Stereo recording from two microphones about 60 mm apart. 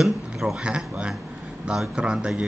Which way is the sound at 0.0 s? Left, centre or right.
Centre.